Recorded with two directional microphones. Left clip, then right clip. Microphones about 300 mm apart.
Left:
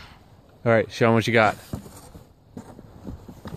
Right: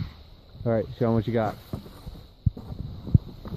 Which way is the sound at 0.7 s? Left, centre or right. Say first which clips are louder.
Left 6 dB; centre.